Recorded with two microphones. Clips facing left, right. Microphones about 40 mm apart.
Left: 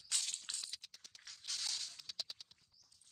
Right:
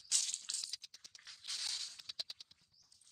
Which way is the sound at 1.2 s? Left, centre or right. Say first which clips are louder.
Even; centre.